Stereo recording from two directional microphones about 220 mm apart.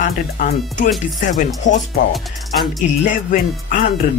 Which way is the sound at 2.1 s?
Centre (ahead or behind).